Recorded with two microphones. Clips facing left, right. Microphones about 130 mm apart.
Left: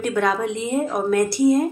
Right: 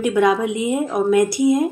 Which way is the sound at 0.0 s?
10° right (ahead or behind).